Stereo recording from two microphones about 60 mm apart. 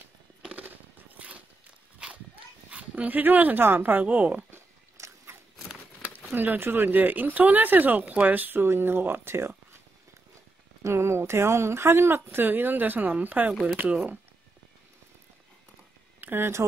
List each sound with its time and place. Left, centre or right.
0.5 s a sound: right
2.7 s speech: right
4.0 s speech: right
4.5 s biting: right
6.3 s speech: right
10.8 s speech: right
16.2 s speech: right